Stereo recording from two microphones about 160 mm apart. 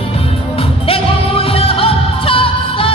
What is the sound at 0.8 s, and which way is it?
Music, 35° left (ahead or behind).